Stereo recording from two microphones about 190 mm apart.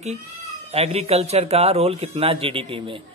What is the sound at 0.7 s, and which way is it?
Speech, 35° right (ahead or behind).